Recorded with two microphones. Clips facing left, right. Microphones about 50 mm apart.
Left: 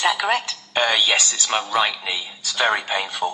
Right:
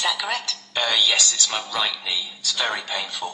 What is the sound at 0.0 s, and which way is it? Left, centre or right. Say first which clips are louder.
A woman's voice: left 5 dB; left.